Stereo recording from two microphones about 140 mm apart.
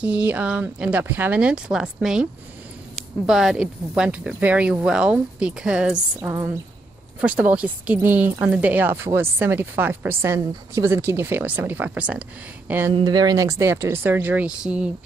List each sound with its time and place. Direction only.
0.0 s speech: 10° right (ahead or behind)
6.1 s speech: 20° right (ahead or behind)
7.2 s speech: 10° right (ahead or behind)
12.9 s speech: 30° right (ahead or behind); by 14.9 s 10° right (ahead or behind)